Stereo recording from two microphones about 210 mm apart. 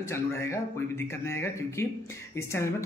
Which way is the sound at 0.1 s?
15° left (ahead or behind).